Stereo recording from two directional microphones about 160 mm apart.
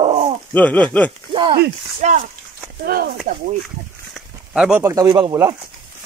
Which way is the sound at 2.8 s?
70° right (ahead or behind).